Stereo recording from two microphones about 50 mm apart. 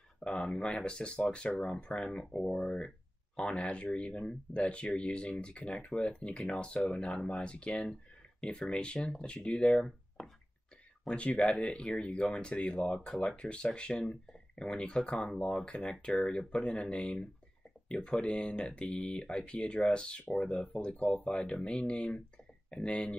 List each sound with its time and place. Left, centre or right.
0.2 s speech: left
9.8 s speech: centre
11.1 s speech: left